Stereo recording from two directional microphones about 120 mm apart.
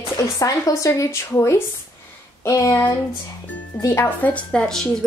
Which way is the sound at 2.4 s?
25° left (ahead or behind).